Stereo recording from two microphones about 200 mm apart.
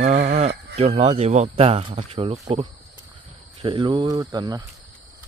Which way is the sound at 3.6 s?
25° right (ahead or behind).